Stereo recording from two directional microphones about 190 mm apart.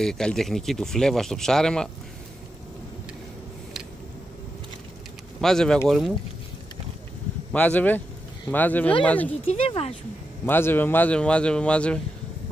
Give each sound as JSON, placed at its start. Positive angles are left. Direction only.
{"t": 0.0, "sound": "speech", "side_deg": 5}
{"t": 5.4, "sound": "speech", "side_deg": 0}
{"t": 7.5, "sound": "speech", "side_deg": 10}
{"t": 9.5, "sound": "speech", "side_deg": 30}
{"t": 10.4, "sound": "speech", "side_deg": 10}